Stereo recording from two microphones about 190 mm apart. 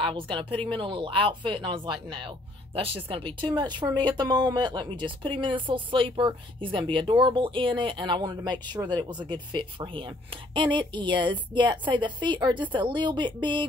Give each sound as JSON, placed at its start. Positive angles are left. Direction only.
{"t": 0.0, "sound": "speech", "side_deg": -25}